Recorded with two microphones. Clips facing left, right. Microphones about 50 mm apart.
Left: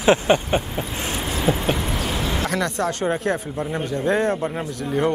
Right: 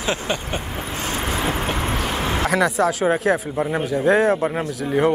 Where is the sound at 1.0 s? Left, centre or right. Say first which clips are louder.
Even; right.